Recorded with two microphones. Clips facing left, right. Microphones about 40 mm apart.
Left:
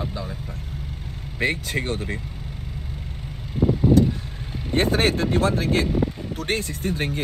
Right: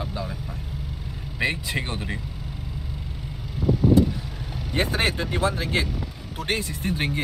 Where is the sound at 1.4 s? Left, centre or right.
Right.